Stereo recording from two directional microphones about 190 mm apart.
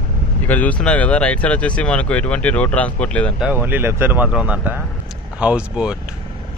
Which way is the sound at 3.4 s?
10° right (ahead or behind).